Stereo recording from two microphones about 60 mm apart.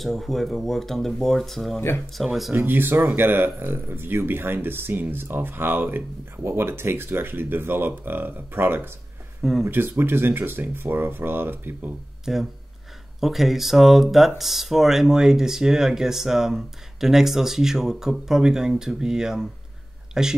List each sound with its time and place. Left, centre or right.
0.0 s speech: centre
2.5 s speech: right
9.4 s speech: centre
9.7 s speech: right
12.3 s speech: centre